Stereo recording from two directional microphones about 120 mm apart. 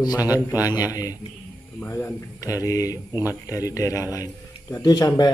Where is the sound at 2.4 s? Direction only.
30° left (ahead or behind).